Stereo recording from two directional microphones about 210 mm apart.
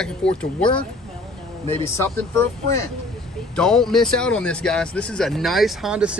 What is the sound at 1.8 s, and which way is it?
Speech, 15° left (ahead or behind).